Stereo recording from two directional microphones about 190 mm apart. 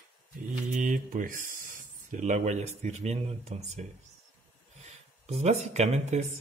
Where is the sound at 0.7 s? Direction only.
45° right (ahead or behind).